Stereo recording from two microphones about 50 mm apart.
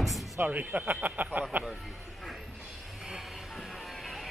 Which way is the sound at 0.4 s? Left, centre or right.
Right.